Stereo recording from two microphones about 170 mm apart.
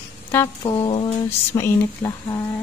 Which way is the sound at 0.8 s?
30° left (ahead or behind).